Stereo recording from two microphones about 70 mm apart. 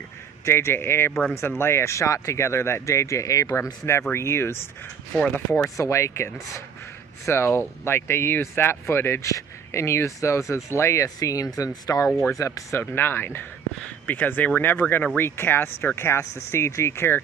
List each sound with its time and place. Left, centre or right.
0.5 s speech: left
4.1 s speech: left
5.8 s speech: left
7.2 s speech: left
12.1 s speech: centre
12.4 s speech: left
12.9 s speech: left